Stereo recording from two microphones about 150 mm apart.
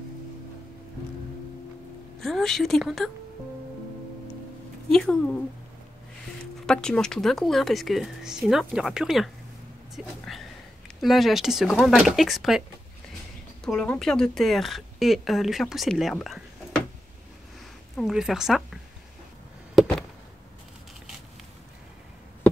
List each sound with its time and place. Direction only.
2.1 s a woman's voice: 5° left (ahead or behind)
4.8 s a woman's voice: 5° left (ahead or behind)
6.6 s a woman's voice: 5° left (ahead or behind)
13.7 s a woman's voice: 5° left (ahead or behind)
17.9 s a woman's voice: centre (ahead or behind)